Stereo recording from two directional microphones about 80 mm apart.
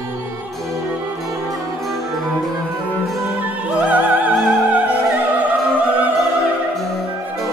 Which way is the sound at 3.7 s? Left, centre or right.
Centre.